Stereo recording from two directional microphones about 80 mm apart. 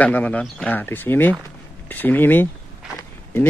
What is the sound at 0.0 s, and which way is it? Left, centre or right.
Speech, centre.